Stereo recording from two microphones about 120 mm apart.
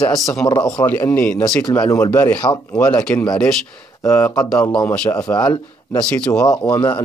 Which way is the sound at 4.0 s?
20° left (ahead or behind).